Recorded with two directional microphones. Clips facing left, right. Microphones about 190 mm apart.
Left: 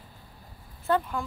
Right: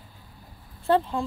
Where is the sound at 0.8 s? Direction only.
30° right (ahead or behind).